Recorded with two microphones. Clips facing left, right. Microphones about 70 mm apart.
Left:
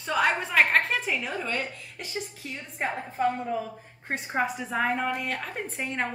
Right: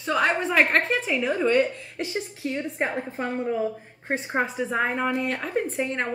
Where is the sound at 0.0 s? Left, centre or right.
Centre.